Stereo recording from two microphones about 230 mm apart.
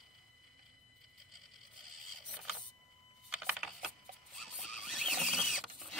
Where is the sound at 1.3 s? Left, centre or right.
Centre.